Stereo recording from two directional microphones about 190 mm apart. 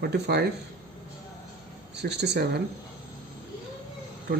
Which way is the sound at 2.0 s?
60° right (ahead or behind).